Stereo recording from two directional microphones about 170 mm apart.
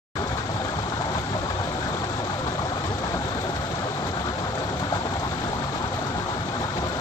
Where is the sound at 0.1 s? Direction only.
20° left (ahead or behind).